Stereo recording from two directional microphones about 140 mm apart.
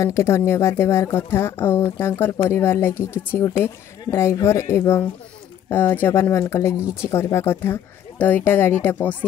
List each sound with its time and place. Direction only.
0.0 s a woman's voice: 20° left (ahead or behind)